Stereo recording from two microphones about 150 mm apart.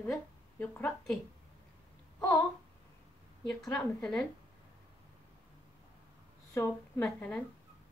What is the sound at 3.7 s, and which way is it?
Speech, 5° left (ahead or behind).